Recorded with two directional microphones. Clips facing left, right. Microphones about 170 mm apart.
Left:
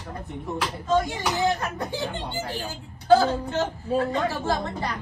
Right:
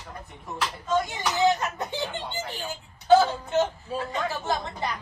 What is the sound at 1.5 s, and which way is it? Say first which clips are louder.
Speech: even; 20° right (ahead or behind).